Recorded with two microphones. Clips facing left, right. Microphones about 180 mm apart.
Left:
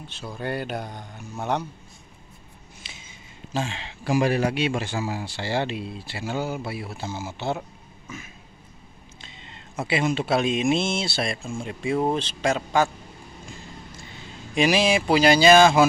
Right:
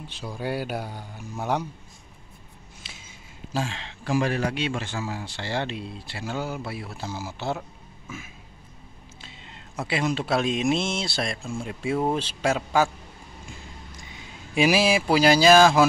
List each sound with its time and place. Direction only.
0.1 s speech: 10° right (ahead or behind)
2.8 s speech: centre (ahead or behind)
7.1 s speech: 25° left (ahead or behind)
7.3 s speech: centre (ahead or behind)
9.2 s speech: 5° right (ahead or behind)
14.5 s speech: 5° right (ahead or behind)